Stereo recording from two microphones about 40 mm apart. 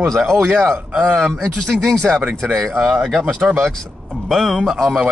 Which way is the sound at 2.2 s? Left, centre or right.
Right.